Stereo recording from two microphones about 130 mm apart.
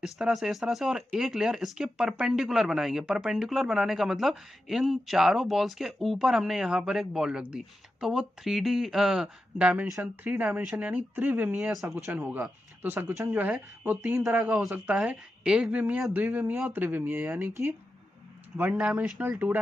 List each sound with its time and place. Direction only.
0.0 s speech: centre (ahead or behind)